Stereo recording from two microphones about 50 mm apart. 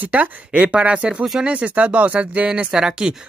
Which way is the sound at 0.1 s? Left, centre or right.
Right.